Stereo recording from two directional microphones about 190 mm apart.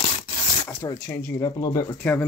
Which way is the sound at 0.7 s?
15° left (ahead or behind).